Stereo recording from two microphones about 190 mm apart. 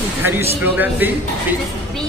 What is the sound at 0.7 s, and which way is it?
Speech, 10° right (ahead or behind).